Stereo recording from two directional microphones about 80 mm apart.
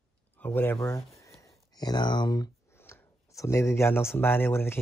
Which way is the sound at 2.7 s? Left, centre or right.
Left.